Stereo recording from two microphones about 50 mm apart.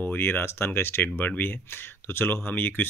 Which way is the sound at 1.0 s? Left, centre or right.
Left.